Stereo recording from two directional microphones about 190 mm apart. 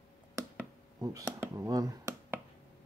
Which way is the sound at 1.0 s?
15° right (ahead or behind).